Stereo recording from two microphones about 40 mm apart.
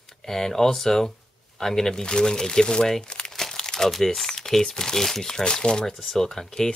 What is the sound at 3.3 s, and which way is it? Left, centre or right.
Crumpling, centre.